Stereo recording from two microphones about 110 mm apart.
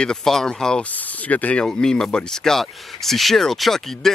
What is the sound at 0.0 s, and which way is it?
Speech, 5° left (ahead or behind).